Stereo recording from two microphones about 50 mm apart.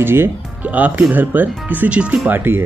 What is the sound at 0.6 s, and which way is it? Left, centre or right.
Speech, right.